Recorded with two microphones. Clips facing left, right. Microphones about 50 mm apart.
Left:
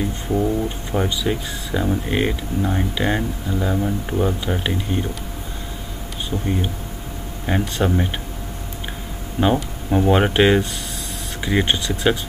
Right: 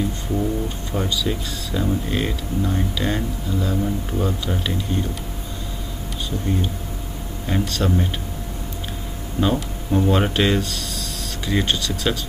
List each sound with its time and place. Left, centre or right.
0.3 s speech: left
6.3 s speech: left
7.4 s speech: left
9.4 s speech: left
9.8 s speech: left